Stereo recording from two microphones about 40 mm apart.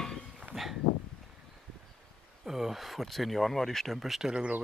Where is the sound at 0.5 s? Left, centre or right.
Centre.